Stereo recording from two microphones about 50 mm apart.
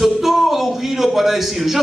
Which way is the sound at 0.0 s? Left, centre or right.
Centre.